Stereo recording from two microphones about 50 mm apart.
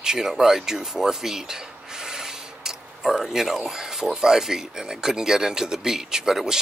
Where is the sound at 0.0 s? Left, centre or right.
Centre.